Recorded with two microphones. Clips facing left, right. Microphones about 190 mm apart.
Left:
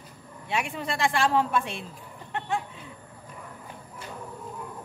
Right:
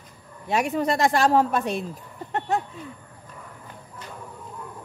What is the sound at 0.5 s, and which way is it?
Speech, 40° right (ahead or behind).